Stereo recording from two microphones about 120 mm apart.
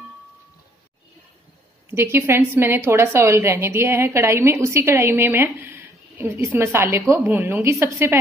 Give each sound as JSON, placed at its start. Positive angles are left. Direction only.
{"t": 1.9, "sound": "a woman's voice", "side_deg": -20}